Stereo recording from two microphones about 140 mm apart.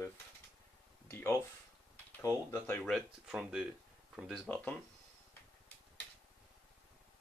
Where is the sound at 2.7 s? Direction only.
Centre (ahead or behind).